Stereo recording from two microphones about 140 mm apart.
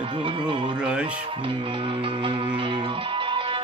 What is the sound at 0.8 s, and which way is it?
Music, 5° right (ahead or behind).